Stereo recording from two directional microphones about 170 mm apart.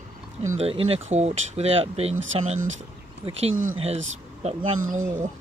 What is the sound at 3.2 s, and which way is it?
Speech, 35° right (ahead or behind).